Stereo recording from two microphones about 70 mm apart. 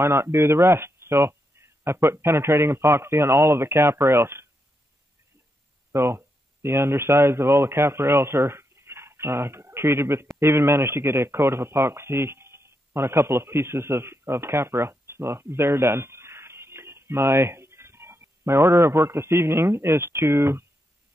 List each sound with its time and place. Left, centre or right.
0.0 s speech: right
5.9 s speech: right